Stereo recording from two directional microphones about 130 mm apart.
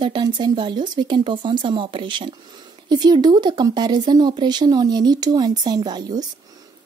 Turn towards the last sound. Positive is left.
turn(degrees=-30)  # may be behind; listen again after turning